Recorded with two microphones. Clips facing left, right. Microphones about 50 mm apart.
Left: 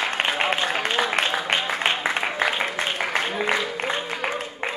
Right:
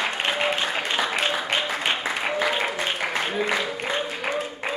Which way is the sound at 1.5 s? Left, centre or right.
Left.